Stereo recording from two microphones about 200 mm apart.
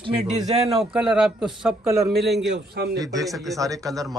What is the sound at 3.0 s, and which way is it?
Speech, 15° right (ahead or behind).